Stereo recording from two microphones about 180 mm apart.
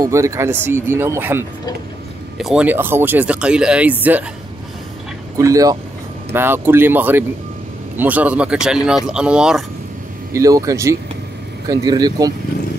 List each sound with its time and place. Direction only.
0.0 s speech: 15° right (ahead or behind)
5.4 s speech: 20° right (ahead or behind)
10.3 s speech: 20° right (ahead or behind)